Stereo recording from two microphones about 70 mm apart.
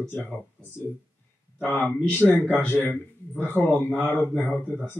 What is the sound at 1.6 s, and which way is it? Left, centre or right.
A man's voice, left.